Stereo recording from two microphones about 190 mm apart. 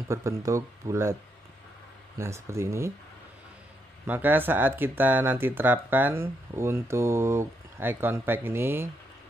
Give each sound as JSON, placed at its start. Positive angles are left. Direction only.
{"t": 0.1, "sound": "speech", "side_deg": -15}
{"t": 2.1, "sound": "speech", "side_deg": -15}
{"t": 4.1, "sound": "speech", "side_deg": -10}